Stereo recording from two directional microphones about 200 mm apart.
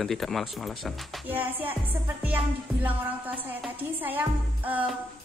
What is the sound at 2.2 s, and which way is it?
Music, 10° right (ahead or behind).